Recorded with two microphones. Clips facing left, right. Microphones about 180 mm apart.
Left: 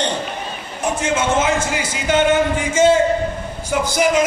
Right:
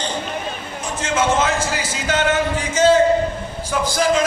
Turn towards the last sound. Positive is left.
turn(degrees=20)  # may be behind; listen again after turning